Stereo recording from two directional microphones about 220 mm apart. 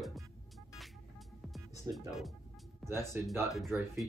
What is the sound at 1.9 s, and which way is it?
Speech, centre (ahead or behind).